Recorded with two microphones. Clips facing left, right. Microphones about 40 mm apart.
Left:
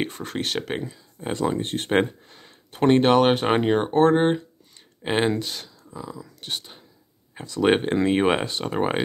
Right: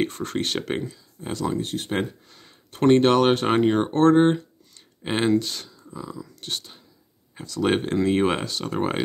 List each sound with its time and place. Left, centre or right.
0.0 s speech: centre
0.9 s speech: left
2.2 s speech: centre
5.8 s a sound: centre
7.3 s speech: left